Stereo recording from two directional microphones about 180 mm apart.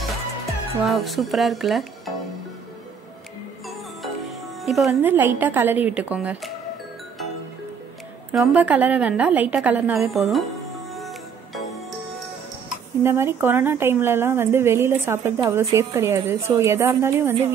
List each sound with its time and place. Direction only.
0.8 s speech: centre (ahead or behind)
3.6 s speech: centre (ahead or behind)
8.3 s speech: 5° right (ahead or behind)
11.0 s music: centre (ahead or behind)
13.0 s speech: 15° right (ahead or behind)